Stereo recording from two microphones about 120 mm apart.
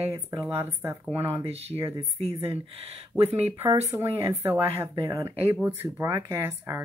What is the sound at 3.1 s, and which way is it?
Speech, 10° right (ahead or behind).